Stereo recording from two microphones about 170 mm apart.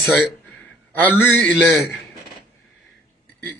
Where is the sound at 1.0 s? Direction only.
10° left (ahead or behind).